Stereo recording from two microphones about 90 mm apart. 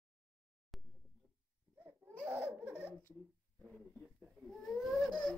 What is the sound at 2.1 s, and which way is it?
Laughter, 10° right (ahead or behind).